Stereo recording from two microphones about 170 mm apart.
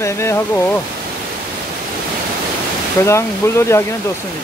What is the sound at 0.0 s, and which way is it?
Speech, 15° left (ahead or behind).